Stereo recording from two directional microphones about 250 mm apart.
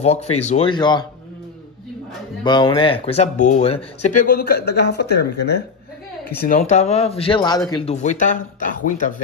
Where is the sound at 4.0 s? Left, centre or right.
Left.